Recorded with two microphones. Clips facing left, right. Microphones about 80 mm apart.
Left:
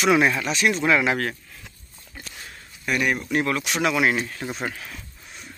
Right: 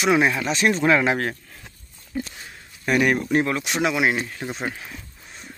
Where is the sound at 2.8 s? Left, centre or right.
Right.